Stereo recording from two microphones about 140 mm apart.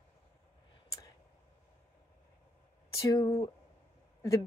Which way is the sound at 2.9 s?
25° left (ahead or behind).